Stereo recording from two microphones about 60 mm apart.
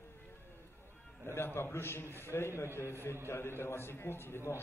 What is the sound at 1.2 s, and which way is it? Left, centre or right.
A man's voice, left.